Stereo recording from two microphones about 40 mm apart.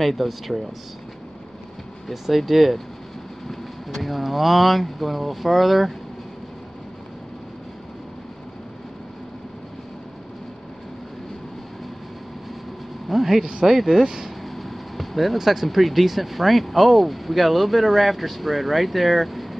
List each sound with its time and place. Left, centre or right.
0.0 s speech: centre
2.0 s speech: centre
13.1 s a sound: centre
13.4 s speech: centre
13.7 s speech: centre
14.5 s speech: centre